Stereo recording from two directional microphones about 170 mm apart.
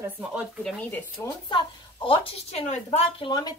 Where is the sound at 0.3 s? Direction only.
5° right (ahead or behind).